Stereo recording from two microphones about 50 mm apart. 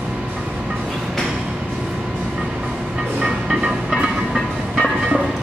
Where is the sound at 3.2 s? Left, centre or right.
Centre.